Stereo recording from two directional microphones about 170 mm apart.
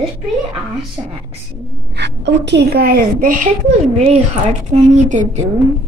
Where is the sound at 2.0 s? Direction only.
90° right; by 5.4 s 45° right (ahead or behind).